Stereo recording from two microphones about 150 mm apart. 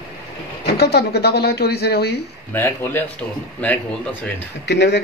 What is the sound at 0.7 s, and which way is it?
Speech, 90° left.